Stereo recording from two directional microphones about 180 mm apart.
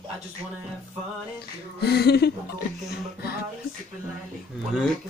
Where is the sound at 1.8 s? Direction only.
65° left (ahead or behind).